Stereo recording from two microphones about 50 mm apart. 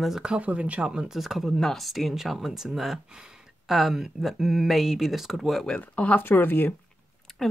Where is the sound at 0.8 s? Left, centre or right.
Centre.